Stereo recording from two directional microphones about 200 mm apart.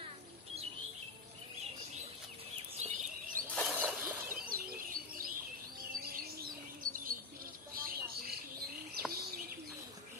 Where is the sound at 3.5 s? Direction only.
Centre (ahead or behind).